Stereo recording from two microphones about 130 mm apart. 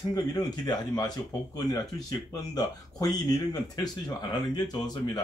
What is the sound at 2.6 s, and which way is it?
Speech, 30° left (ahead or behind).